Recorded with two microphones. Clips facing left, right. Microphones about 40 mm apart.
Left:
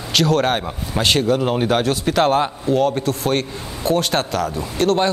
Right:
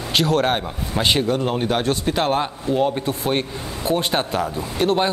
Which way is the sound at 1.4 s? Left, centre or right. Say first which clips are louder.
Left 3 dB; centre.